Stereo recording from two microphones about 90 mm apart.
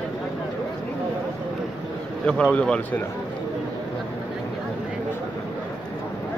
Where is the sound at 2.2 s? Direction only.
10° left (ahead or behind).